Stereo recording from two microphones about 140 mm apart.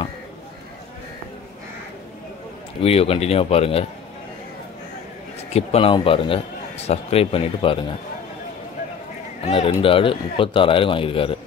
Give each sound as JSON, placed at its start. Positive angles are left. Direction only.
{"t": 2.8, "sound": "speech", "side_deg": 45}
{"t": 5.5, "sound": "a man's voice", "side_deg": 45}
{"t": 9.4, "sound": "a man's voice", "side_deg": 45}